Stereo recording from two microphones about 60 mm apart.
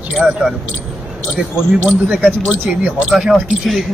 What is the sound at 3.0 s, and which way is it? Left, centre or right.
Speech, centre.